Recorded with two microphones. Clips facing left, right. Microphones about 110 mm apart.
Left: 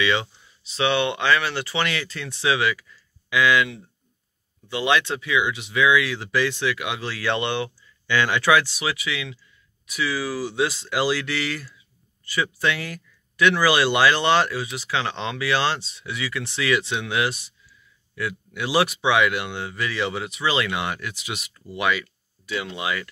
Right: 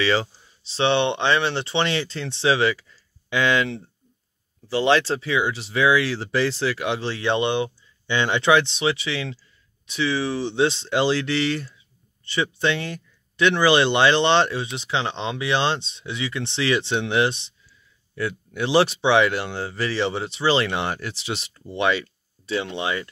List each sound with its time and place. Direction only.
0.0 s speech: 35° right (ahead or behind)